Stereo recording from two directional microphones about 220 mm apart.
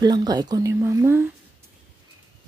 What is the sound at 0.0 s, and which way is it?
Speech, 20° right (ahead or behind).